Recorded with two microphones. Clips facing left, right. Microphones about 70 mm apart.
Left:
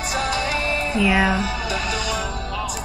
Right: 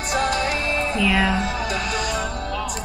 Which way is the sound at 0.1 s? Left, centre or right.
Right.